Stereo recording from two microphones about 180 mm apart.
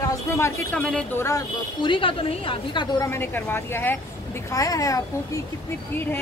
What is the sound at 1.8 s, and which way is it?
A woman's voice, 30° left (ahead or behind).